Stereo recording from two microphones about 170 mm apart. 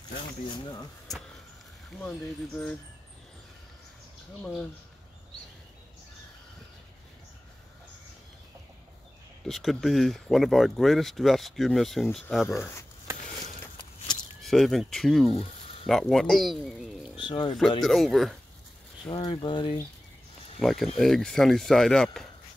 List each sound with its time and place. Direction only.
0.5 s speech: 25° left (ahead or behind)
1.9 s speech: 5° left (ahead or behind)
9.5 s speech: centre (ahead or behind)
12.5 s speech: 15° left (ahead or behind)
14.4 s speech: centre (ahead or behind)
17.2 s speech: 30° left (ahead or behind)
17.6 s speech: centre (ahead or behind)
19.0 s speech: 30° left (ahead or behind)
20.5 s speech: centre (ahead or behind)